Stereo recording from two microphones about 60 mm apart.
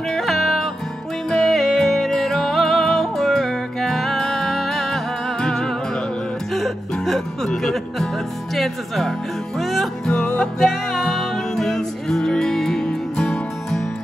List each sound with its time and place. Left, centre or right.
0.1 s music: centre
8.5 s speech: centre
10.0 s music: centre
10.6 s music: centre